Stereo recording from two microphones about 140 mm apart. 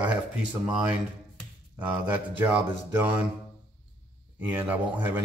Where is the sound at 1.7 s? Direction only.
10° right (ahead or behind).